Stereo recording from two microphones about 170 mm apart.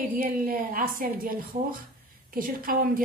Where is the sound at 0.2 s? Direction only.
55° right (ahead or behind).